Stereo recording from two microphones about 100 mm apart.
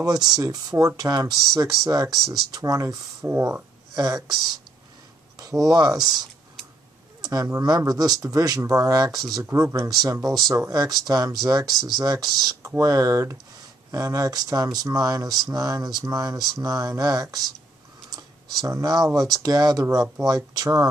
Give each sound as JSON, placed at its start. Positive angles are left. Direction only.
{"t": 0.0, "sound": "speech", "side_deg": -40}
{"t": 3.9, "sound": "speech", "side_deg": -35}
{"t": 5.6, "sound": "speech", "side_deg": -40}
{"t": 7.2, "sound": "a sound", "side_deg": -40}
{"t": 7.6, "sound": "speech", "side_deg": -40}
{"t": 18.6, "sound": "speech", "side_deg": -35}